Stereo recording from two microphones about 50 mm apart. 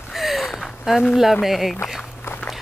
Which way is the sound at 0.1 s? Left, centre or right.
Centre.